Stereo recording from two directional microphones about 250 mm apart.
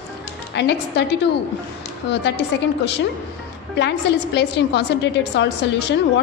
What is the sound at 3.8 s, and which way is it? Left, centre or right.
A woman's voice, left.